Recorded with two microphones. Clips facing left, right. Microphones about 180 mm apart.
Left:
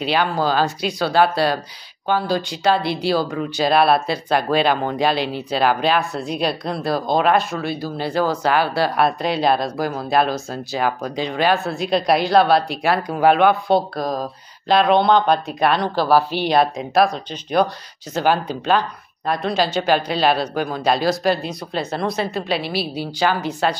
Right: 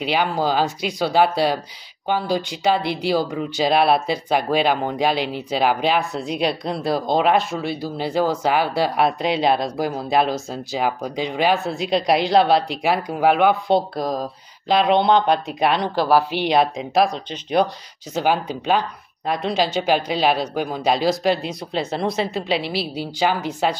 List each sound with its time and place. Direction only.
0.0 s speech: 15° right (ahead or behind)